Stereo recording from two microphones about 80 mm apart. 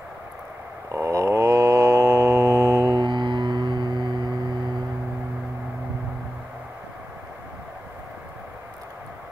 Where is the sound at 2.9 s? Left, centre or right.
Right.